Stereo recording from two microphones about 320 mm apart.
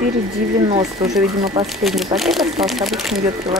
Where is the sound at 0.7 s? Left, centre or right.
Centre.